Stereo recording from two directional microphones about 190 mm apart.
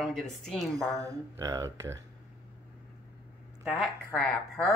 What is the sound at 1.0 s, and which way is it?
Speech, 20° right (ahead or behind).